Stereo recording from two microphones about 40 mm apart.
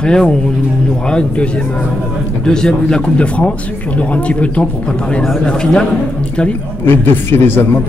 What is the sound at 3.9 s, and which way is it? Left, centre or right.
Speech, left.